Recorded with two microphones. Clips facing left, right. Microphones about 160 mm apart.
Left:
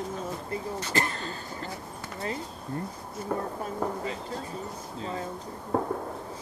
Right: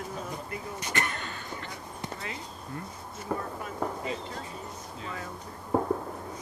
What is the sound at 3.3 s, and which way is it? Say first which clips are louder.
Speech: left 2 dB; centre (ahead or behind).